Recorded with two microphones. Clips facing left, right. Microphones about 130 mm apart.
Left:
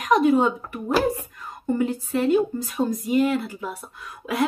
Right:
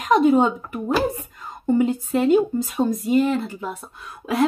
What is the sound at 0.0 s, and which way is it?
Speech, 25° right (ahead or behind).